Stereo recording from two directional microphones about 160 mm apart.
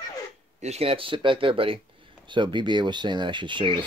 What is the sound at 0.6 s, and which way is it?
Speech, 40° right (ahead or behind).